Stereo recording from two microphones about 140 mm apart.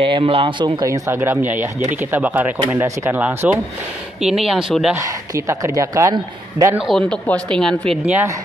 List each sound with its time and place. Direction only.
0.0 s speech: 40° right (ahead or behind)
0.8 s speech: 20° right (ahead or behind); by 4.9 s 5° right (ahead or behind)
4.9 s a man's voice: 20° right (ahead or behind)
6.8 s speech: centre (ahead or behind)
8.0 s speech: 10° right (ahead or behind)